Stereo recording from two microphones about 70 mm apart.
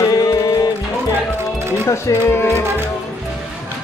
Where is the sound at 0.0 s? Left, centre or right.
Left.